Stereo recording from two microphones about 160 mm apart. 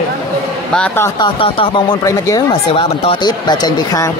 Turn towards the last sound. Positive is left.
turn(degrees=25)  # may be behind; listen again after turning